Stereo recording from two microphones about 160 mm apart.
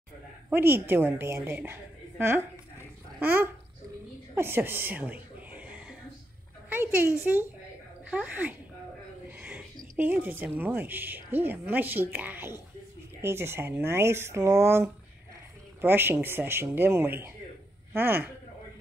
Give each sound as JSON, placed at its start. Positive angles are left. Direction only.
{"t": 0.5, "sound": "a woman's voice", "side_deg": -15}
{"t": 4.4, "sound": "a sound", "side_deg": -15}
{"t": 8.1, "sound": "a woman's voice", "side_deg": -10}